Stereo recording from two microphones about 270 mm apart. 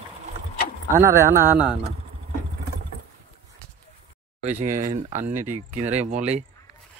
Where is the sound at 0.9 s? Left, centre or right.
Centre.